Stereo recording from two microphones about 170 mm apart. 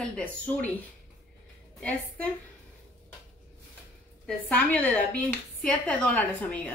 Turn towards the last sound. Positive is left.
turn(degrees=5)  # may be behind; listen again after turning